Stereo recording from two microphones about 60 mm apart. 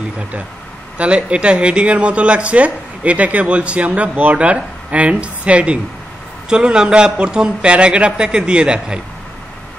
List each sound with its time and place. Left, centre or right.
0.9 s speech: right